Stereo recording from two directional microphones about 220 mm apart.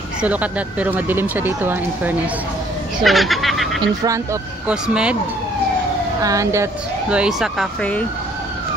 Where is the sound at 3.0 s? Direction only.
Centre (ahead or behind).